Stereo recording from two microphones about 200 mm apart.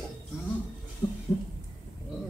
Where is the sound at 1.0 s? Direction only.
30° left (ahead or behind).